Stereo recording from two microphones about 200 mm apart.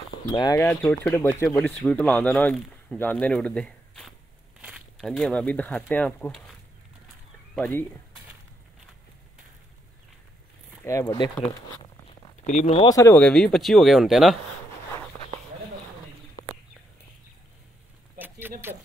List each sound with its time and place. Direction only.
0.3 s speech: 20° left (ahead or behind)
7.5 s speech: 5° left (ahead or behind)
10.8 s speech: 15° left (ahead or behind)
12.4 s speech: 35° left (ahead or behind)
12.8 s speech: 15° left (ahead or behind); by 14.3 s centre (ahead or behind)